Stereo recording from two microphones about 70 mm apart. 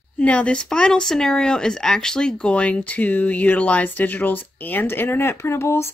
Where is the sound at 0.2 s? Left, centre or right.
Centre; by 5.9 s left.